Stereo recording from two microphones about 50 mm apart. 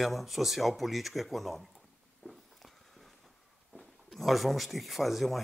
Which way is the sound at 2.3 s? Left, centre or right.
Centre.